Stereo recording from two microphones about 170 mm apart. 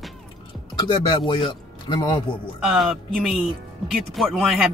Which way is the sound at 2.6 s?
Centre (ahead or behind).